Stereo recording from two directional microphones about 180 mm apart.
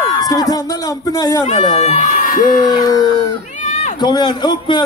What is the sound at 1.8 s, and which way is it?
Speech, 40° left (ahead or behind).